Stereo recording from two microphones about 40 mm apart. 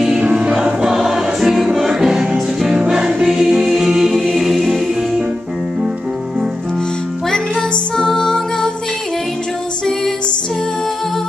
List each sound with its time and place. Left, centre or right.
0.2 s music: right
0.8 s music: centre
7.9 s music: centre